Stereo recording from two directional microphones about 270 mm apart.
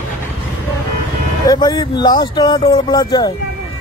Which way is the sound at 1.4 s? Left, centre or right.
Centre.